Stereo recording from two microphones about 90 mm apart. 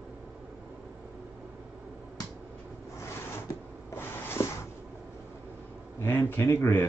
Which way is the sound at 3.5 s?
25° left (ahead or behind).